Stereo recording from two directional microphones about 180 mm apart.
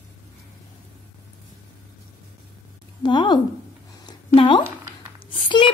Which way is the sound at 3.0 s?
25° left (ahead or behind).